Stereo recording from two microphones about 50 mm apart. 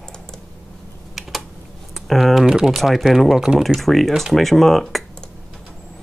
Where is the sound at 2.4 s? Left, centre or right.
Centre.